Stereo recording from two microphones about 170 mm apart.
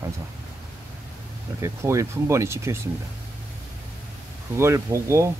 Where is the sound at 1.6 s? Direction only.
15° right (ahead or behind).